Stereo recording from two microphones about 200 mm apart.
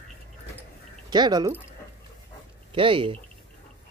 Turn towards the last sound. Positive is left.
turn(degrees=-25)  # may be behind; listen again after turning